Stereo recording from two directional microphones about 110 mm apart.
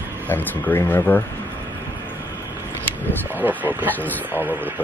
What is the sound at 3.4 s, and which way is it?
Speech, 15° right (ahead or behind).